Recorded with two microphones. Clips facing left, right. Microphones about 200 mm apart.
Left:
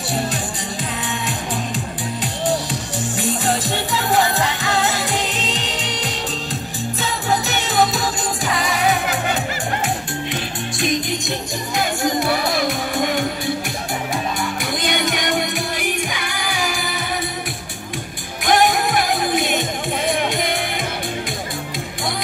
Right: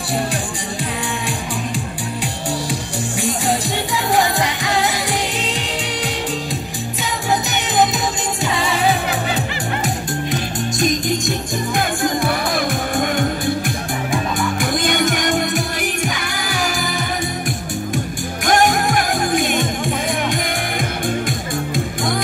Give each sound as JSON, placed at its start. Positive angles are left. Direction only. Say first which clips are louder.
{"t": 2.4, "sound": "music", "louder": "left 4 dB", "side_deg": -10}
{"t": 7.4, "sound": "music", "louder": "right 2 dB", "side_deg": -20}
{"t": 10.3, "sound": "music", "louder": "right 4 dB", "side_deg": -45}
{"t": 18.4, "sound": "music", "louder": "right 1 dB", "side_deg": -45}